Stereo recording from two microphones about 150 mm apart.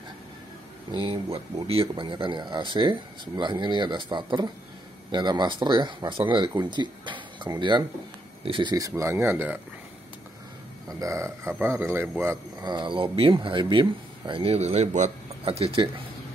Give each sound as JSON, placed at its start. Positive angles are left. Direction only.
{"t": 0.9, "sound": "speech", "side_deg": -35}
{"t": 10.9, "sound": "speech", "side_deg": -20}
{"t": 12.6, "sound": "speech", "side_deg": -30}
{"t": 15.4, "sound": "speech", "side_deg": -40}